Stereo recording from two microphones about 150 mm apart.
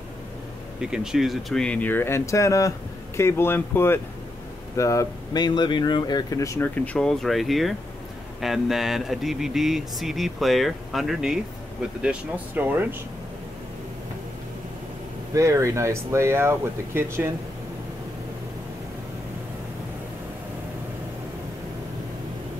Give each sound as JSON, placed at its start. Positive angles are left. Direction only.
{"t": 0.7, "sound": "speech", "side_deg": -5}
{"t": 15.3, "sound": "speech", "side_deg": -20}